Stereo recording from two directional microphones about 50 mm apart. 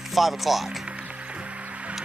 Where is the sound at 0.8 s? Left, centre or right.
Right.